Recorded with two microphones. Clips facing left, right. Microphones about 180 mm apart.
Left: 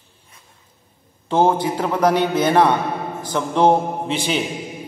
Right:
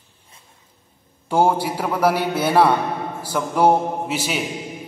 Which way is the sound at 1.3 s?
10° right (ahead or behind).